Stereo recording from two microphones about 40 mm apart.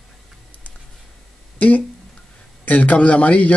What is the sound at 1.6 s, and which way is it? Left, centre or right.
Speech, left.